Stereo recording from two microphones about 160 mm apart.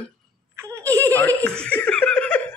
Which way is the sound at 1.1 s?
10° left (ahead or behind).